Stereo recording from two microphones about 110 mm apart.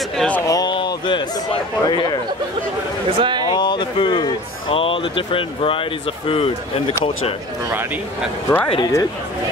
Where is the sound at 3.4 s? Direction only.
45° left (ahead or behind).